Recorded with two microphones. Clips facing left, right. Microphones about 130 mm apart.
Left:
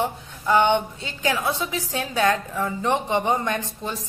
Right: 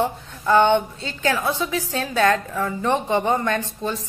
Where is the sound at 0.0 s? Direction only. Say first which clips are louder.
Right 3 dB; 15° left (ahead or behind).